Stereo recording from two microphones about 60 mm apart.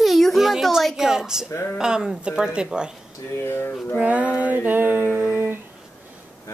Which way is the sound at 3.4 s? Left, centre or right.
Left.